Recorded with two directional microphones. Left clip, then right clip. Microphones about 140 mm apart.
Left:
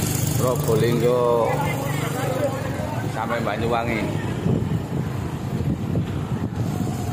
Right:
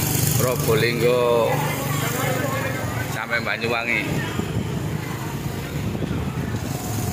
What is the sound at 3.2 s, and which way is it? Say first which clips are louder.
Speech: even; 15° left (ahead or behind).